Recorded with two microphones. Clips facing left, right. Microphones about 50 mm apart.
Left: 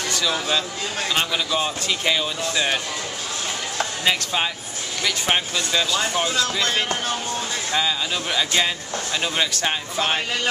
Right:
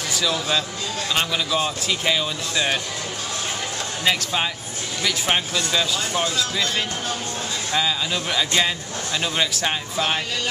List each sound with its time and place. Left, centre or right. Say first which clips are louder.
1.1 s speech: right 1 dB; centre
4.0 s speech: right 1 dB; centre
6.6 s speech: left 2 dB; left
7.7 s speech: right 1 dB; centre
9.9 s speech: left 1 dB; centre